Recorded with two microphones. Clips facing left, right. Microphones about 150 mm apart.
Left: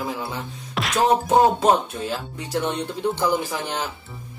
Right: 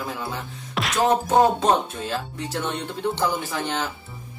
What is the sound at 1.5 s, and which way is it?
Speech, 10° left (ahead or behind).